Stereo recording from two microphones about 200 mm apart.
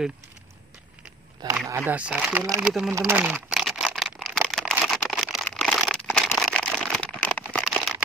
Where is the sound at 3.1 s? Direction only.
10° right (ahead or behind).